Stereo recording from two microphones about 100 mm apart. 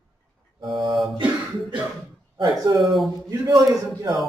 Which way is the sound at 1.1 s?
50° right (ahead or behind).